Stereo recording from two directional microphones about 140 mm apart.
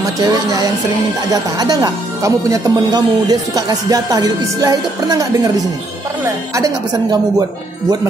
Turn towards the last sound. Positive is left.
turn(degrees=-25)  # may be behind; listen again after turning